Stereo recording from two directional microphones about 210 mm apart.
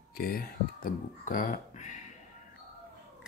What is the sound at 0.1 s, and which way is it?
Speech, 45° left (ahead or behind).